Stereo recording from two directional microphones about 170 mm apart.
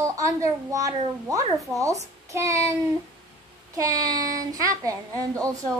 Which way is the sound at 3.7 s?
20° right (ahead or behind).